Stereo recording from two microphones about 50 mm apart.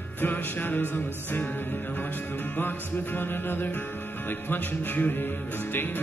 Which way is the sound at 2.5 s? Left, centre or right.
Left.